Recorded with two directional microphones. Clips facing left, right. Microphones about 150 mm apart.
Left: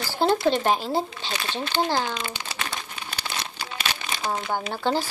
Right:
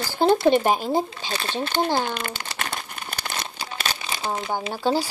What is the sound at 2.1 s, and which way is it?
Crumpling, 50° right (ahead or behind).